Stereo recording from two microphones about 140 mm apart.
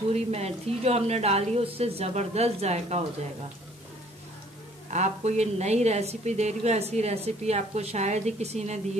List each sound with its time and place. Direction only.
0.1 s a woman's voice: 50° right (ahead or behind)
4.9 s a woman's voice: 55° right (ahead or behind)